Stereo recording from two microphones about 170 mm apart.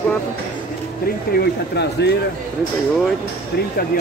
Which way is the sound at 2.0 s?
85° left.